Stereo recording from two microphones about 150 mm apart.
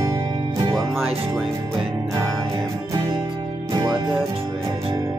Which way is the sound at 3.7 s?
25° right (ahead or behind).